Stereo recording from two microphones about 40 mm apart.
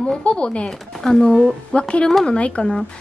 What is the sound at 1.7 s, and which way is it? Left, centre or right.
Speech, left.